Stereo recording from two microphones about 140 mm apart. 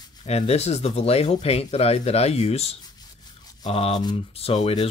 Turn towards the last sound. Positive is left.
turn(degrees=45)  # may be behind; listen again after turning